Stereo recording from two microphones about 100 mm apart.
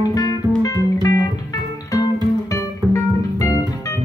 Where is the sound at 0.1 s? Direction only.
40° left (ahead or behind).